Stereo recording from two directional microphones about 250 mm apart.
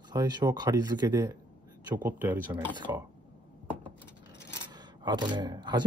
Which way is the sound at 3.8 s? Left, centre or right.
Centre.